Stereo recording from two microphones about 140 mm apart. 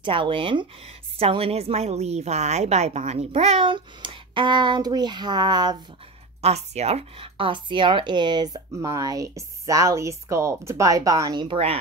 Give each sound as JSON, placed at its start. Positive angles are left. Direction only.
{"t": 0.0, "sound": "a woman's voice", "side_deg": -40}
{"t": 6.4, "sound": "speech", "side_deg": -50}